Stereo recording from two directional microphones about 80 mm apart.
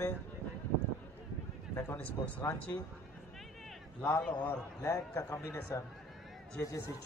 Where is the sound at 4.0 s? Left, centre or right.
Left.